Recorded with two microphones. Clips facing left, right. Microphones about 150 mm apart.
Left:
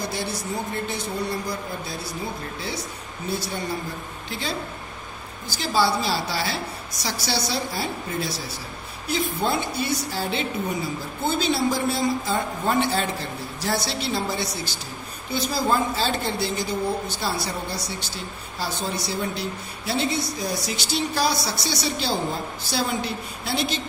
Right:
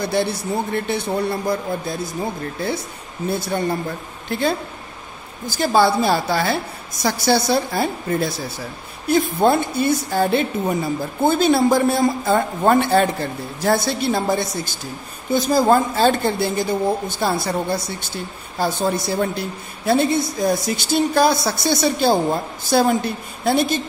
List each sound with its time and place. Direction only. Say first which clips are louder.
0.1 s a man's voice: right 8 dB; 60° right (ahead or behind)
5.6 s a woman's voice: right 6 dB; 50° right (ahead or behind)